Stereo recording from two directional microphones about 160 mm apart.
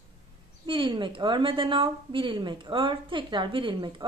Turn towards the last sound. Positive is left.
turn(degrees=-30)  # may be behind; listen again after turning